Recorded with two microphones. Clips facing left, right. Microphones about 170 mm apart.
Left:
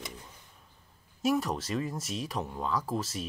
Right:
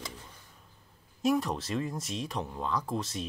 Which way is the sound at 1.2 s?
Centre (ahead or behind).